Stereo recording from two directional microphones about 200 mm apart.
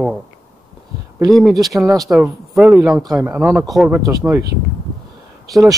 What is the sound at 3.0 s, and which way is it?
Speech, 15° right (ahead or behind).